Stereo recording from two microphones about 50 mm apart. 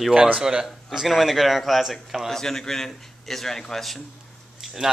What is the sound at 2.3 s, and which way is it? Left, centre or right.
A man's voice, centre.